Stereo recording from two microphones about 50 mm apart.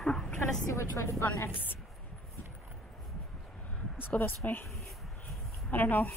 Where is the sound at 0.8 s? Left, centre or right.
Left.